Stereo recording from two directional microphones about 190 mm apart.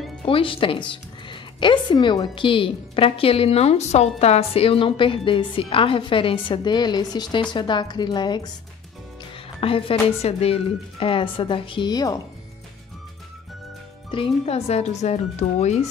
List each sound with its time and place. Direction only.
0.2 s a woman's voice: 30° left (ahead or behind)
9.6 s a woman's voice: 30° left (ahead or behind)
14.1 s speech: 30° left (ahead or behind)